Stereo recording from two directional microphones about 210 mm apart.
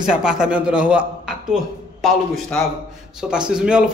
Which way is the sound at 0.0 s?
5° right (ahead or behind).